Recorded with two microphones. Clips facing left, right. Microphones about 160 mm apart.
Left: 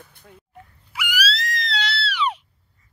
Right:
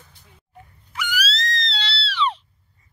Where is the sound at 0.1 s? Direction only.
55° left (ahead or behind).